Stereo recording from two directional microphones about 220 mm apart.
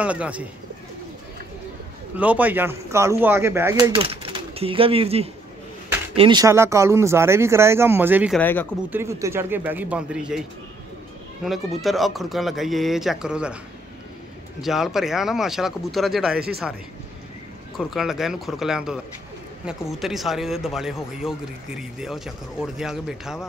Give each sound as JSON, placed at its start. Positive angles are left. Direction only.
{"t": 0.0, "sound": "speech", "side_deg": -5}
{"t": 2.1, "sound": "speech", "side_deg": -5}
{"t": 3.9, "sound": "speech", "side_deg": -25}
{"t": 8.4, "sound": "speech", "side_deg": 10}
{"t": 8.9, "sound": "speech", "side_deg": -10}
{"t": 11.4, "sound": "speech", "side_deg": 0}
{"t": 14.6, "sound": "speech", "side_deg": 0}
{"t": 17.7, "sound": "speech", "side_deg": 0}